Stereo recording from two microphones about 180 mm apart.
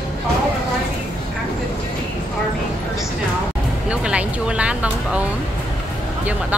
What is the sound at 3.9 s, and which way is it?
Speech, 5° right (ahead or behind).